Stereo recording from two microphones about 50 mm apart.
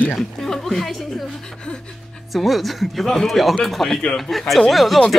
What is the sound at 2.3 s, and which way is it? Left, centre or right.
Speech, centre.